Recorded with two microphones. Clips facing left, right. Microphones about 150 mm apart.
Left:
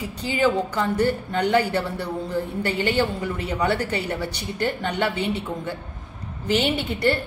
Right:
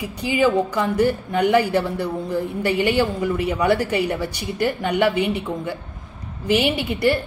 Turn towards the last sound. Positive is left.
turn(degrees=-10)  # may be behind; listen again after turning